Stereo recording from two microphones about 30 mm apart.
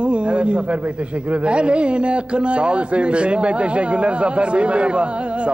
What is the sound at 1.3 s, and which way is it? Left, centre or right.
A man's voice, right.